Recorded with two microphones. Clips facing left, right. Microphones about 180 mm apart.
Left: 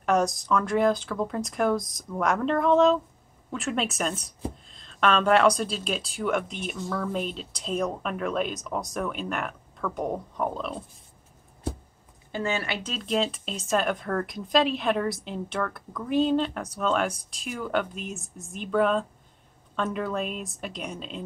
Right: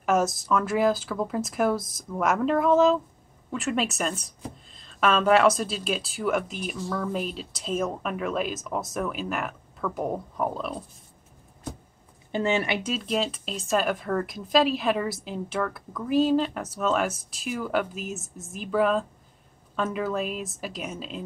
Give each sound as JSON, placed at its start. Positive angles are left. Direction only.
{"t": 0.0, "sound": "speech", "side_deg": -5}
{"t": 12.3, "sound": "speech", "side_deg": -20}